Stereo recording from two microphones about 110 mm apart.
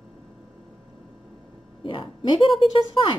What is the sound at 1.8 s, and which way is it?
Speech, 50° left (ahead or behind).